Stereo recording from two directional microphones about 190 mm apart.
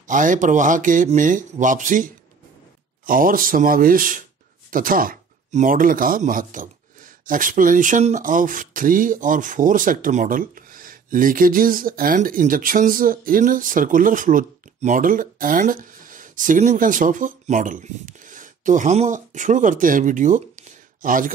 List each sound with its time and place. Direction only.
0.0 s speech: 45° right (ahead or behind)